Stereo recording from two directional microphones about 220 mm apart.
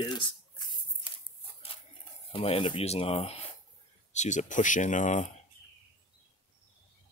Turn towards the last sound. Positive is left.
turn(degrees=35)  # may be behind; listen again after turning